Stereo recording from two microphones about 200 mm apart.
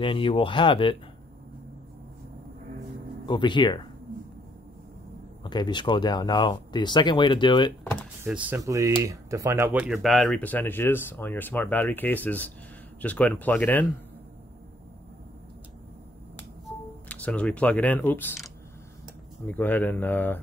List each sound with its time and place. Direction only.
0.0 s speech: 25° left (ahead or behind)
3.3 s speech: 25° left (ahead or behind)
5.4 s speech: 20° left (ahead or behind)
7.8 s door: 5° left (ahead or behind)
8.2 s speech: 10° right (ahead or behind); by 13.8 s 10° left (ahead or behind)
17.1 s speech: 5° left (ahead or behind)